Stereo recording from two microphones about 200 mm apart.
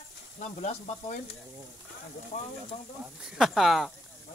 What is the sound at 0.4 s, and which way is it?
Sizzle, 35° left (ahead or behind).